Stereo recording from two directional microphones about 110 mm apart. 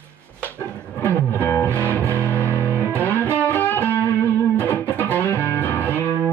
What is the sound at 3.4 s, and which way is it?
Music, 15° left (ahead or behind).